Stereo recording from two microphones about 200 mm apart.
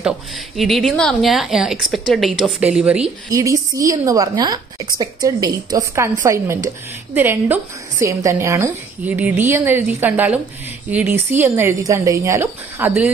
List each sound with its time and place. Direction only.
0.6 s a woman's voice: centre (ahead or behind)
3.3 s a woman's voice: 15° right (ahead or behind)